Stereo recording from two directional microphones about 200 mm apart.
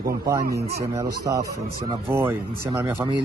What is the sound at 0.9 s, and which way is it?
Speech, 15° right (ahead or behind).